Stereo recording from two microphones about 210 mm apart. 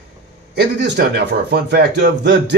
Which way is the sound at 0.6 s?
50° right (ahead or behind).